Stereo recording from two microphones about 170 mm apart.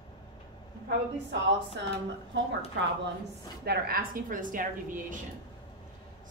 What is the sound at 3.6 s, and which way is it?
A woman's voice, 60° right (ahead or behind).